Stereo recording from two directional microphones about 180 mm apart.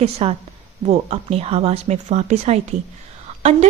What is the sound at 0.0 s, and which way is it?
A woman's voice, 35° right (ahead or behind).